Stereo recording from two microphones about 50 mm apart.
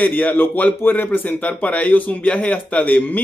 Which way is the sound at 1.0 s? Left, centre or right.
Left.